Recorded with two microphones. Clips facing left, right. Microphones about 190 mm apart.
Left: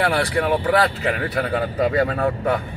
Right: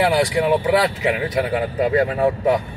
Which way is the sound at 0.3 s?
15° right (ahead or behind).